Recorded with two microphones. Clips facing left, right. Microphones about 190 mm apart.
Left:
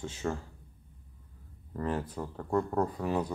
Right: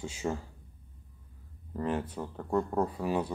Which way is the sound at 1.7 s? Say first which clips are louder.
Right 1 dB; 10° right (ahead or behind).